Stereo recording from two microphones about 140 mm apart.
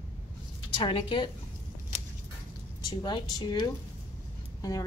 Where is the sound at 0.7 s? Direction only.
40° left (ahead or behind).